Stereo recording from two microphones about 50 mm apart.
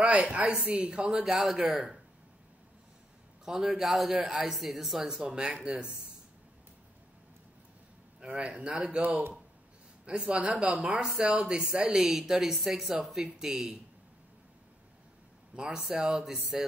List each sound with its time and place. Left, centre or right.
0.0 s speech: right
1.1 s speech: centre
3.4 s speech: centre
8.4 s speech: right
10.2 s speech: right
15.5 s a man's voice: centre